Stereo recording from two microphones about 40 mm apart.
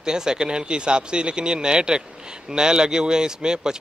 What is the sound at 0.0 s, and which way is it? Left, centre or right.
Speech, centre.